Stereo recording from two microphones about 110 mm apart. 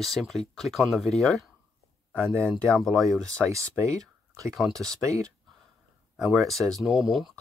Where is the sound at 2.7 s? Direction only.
Centre (ahead or behind).